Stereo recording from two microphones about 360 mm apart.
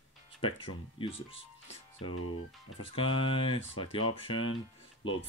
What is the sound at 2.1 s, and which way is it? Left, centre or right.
Speech, left.